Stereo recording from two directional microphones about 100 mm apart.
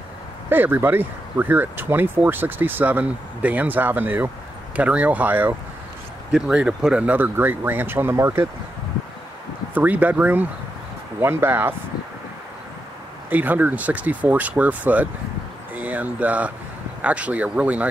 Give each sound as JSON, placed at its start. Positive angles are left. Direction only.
{"t": 0.5, "sound": "speech", "side_deg": -20}
{"t": 9.8, "sound": "speech", "side_deg": -15}
{"t": 13.3, "sound": "speech", "side_deg": -15}